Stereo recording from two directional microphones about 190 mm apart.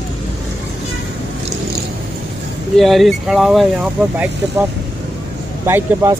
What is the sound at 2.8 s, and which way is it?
Speech, centre (ahead or behind).